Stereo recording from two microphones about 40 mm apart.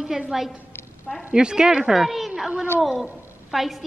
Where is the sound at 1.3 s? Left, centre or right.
Right.